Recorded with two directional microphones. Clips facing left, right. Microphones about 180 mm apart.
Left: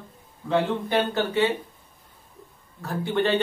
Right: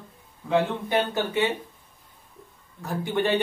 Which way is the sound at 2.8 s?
15° right (ahead or behind).